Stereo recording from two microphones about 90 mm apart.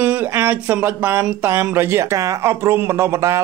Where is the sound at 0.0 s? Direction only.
20° right (ahead or behind).